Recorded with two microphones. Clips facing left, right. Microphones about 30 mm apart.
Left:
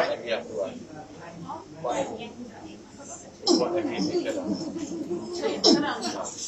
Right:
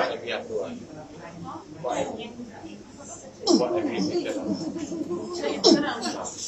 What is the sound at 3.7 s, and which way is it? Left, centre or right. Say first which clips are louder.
Speech: right 1 dB; centre.